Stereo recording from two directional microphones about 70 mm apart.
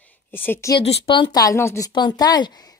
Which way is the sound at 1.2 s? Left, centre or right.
Left.